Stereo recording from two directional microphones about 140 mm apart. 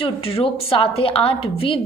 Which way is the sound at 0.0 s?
40° left (ahead or behind).